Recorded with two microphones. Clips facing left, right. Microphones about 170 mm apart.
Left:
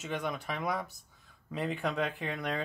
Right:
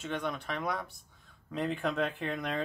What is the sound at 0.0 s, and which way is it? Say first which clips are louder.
Speech: even; 5° left (ahead or behind).